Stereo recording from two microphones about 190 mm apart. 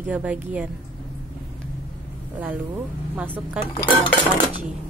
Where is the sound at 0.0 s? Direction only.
10° right (ahead or behind).